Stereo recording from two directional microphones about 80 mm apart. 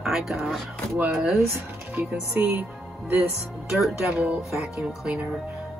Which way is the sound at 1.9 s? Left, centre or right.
Centre.